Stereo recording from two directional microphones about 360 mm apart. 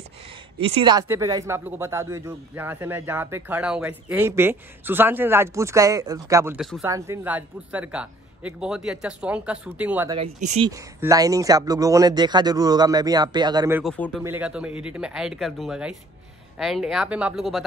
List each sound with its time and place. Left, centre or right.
0.6 s speech: centre
13.9 s speech: centre